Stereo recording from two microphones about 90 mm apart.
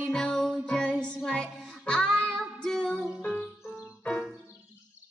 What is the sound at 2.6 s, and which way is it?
Music, 10° left (ahead or behind).